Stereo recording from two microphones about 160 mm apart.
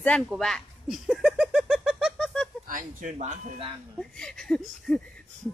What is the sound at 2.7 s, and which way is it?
Speech, 55° right (ahead or behind).